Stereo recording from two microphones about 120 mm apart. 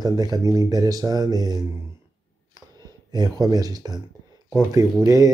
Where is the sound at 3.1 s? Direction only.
30° right (ahead or behind).